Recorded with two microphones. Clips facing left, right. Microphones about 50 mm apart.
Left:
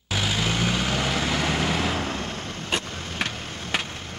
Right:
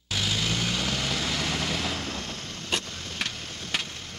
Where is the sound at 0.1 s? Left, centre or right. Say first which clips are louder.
Left 3 dB; centre.